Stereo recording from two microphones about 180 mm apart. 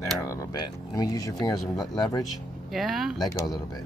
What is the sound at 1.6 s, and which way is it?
Speech, centre (ahead or behind).